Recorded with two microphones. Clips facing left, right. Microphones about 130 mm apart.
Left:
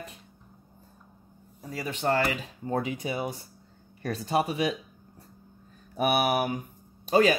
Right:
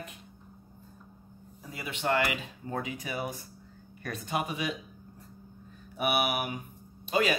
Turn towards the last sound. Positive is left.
turn(degrees=40)  # may be behind; listen again after turning